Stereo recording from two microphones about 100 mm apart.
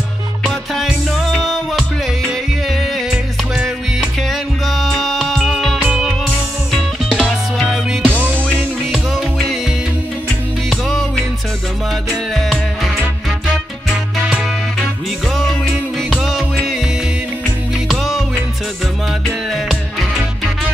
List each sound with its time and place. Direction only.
0.4 s music: centre (ahead or behind)
5.9 s music: 10° right (ahead or behind)
6.7 s music: 5° left (ahead or behind)
10.7 s music: centre (ahead or behind)
12.4 s music: 5° left (ahead or behind)
15.3 s music: 5° left (ahead or behind)
17.8 s music: centre (ahead or behind)
19.5 s music: centre (ahead or behind)